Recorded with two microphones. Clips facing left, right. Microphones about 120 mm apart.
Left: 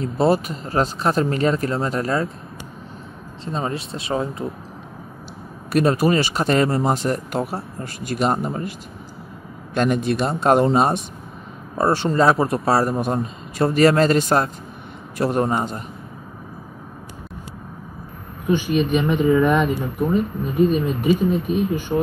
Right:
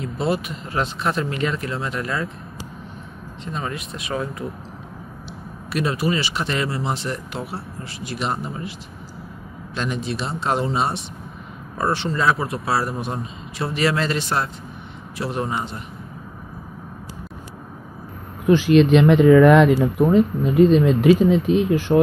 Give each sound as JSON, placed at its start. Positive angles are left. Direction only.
{"t": 0.0, "sound": "speech", "side_deg": 40}
{"t": 3.5, "sound": "speech", "side_deg": 30}
{"t": 5.7, "sound": "speech", "side_deg": 45}
{"t": 9.8, "sound": "speech", "side_deg": 55}
{"t": 18.5, "sound": "speech", "side_deg": -90}